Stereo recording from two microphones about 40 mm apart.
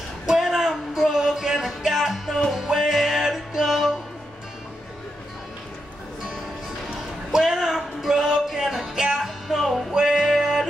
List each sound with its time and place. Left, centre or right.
0.3 s music: centre
7.0 s a sound: centre
9.5 s music: centre
9.9 s music: centre